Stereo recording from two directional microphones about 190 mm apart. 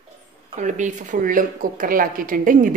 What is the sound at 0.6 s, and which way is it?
Speech, 40° right (ahead or behind).